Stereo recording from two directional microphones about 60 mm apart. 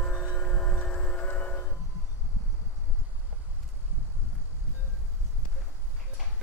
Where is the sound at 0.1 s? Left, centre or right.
Left.